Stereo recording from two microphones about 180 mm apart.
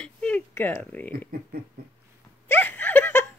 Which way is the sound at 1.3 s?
55° right (ahead or behind).